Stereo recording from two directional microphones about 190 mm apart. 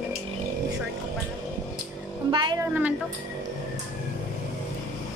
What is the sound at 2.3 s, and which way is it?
Music, 25° right (ahead or behind).